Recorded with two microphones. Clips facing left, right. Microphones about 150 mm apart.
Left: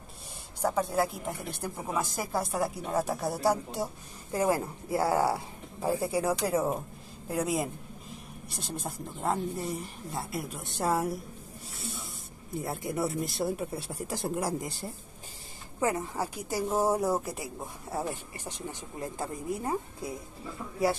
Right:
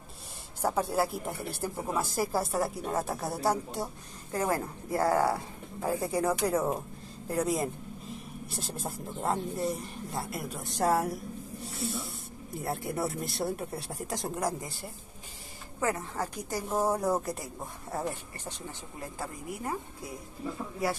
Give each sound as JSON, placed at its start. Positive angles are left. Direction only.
{"t": 0.6, "sound": "speech", "side_deg": -5}
{"t": 4.3, "sound": "speech", "side_deg": 15}
{"t": 11.6, "sound": "snake", "side_deg": 0}
{"t": 12.5, "sound": "speech", "side_deg": 0}
{"t": 15.8, "sound": "speech", "side_deg": 15}